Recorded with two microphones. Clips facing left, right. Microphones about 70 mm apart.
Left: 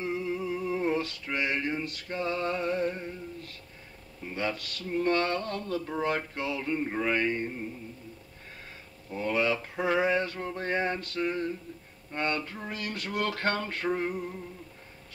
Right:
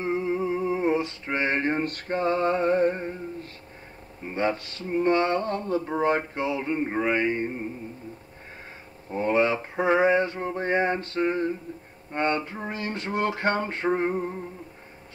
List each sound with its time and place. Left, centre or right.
0.0 s music: right
4.2 s speech: right
9.1 s speech: right